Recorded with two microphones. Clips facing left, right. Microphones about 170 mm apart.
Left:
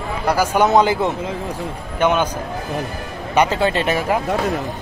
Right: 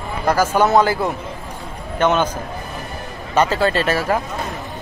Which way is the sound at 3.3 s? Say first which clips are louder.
Even; 15° left (ahead or behind).